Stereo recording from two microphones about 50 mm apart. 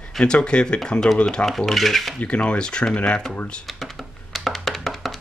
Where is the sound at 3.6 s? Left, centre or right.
Centre.